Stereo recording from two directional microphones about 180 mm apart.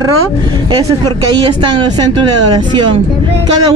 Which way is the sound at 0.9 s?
25° right (ahead or behind).